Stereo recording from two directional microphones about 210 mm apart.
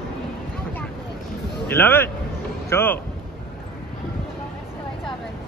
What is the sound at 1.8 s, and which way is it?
Speech, 10° left (ahead or behind).